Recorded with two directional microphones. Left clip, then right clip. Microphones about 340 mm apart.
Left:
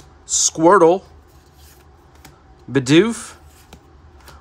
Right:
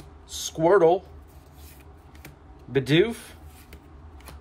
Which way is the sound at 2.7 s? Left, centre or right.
Centre.